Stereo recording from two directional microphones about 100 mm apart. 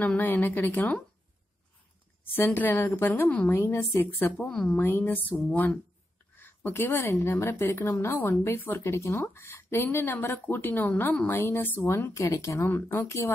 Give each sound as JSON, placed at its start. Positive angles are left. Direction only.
{"t": 0.0, "sound": "speech", "side_deg": 20}
{"t": 2.3, "sound": "a woman's voice", "side_deg": 20}
{"t": 4.5, "sound": "a woman's voice", "side_deg": 5}
{"t": 4.7, "sound": "speech", "side_deg": 20}
{"t": 6.4, "sound": "a woman's voice", "side_deg": 25}